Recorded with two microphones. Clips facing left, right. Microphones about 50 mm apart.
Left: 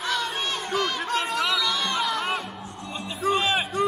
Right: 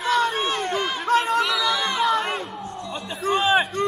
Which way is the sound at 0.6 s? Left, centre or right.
Centre.